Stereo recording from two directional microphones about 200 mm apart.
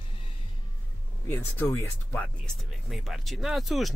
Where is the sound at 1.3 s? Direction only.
10° left (ahead or behind).